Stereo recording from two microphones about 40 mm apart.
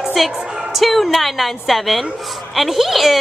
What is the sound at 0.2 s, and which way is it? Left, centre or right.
A woman's voice, centre.